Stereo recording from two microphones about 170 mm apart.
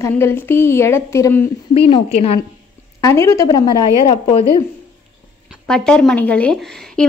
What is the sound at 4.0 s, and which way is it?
Speech, 35° left (ahead or behind).